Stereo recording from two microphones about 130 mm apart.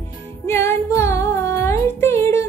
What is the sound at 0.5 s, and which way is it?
Music, 20° left (ahead or behind).